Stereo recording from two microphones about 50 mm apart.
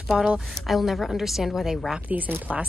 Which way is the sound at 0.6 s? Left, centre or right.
Centre.